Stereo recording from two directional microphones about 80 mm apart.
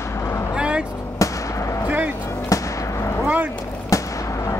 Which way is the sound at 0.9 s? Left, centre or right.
Left.